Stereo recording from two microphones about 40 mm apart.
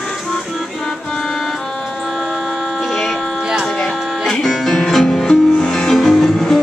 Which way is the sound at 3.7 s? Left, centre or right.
Centre.